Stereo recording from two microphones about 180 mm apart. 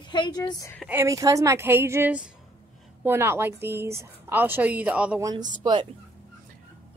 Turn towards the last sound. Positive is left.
turn(degrees=-25)  # may be behind; listen again after turning